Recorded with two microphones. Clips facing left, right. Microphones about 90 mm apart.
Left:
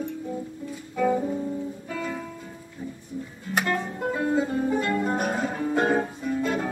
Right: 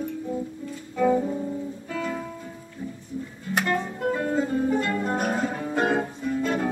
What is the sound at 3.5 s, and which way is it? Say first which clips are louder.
Music: right 1 dB; 5° left (ahead or behind).